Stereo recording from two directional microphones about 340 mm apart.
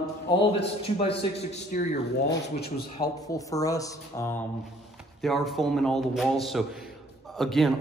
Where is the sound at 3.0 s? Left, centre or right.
Centre.